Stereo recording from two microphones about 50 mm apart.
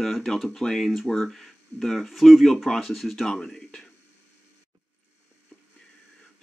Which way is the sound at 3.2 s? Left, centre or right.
Centre.